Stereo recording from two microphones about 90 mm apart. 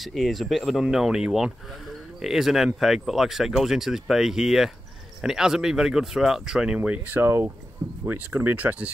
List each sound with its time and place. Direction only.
0.0 s speech: centre (ahead or behind); by 8.9 s 15° right (ahead or behind)